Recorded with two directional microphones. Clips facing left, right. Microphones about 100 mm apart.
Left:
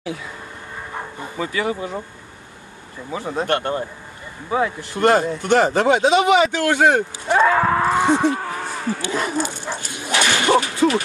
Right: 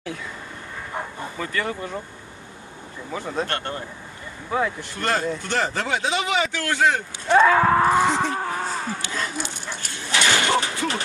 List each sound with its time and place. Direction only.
1.2 s speech: 10° left (ahead or behind)
3.3 s speech: 15° left (ahead or behind)
4.5 s speech: 5° left (ahead or behind)
4.9 s speech: 20° left (ahead or behind)
7.3 s speech: 10° left (ahead or behind)
7.6 s a sound: 5° right (ahead or behind)
8.0 s speech: 20° left (ahead or behind)
9.7 s dog: 20° left (ahead or behind)
10.3 s a sound: 20° left (ahead or behind)
10.7 s bow-wow: 20° left (ahead or behind)